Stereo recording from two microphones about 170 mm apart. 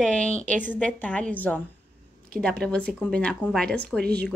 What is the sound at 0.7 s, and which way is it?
Speech, 5° left (ahead or behind).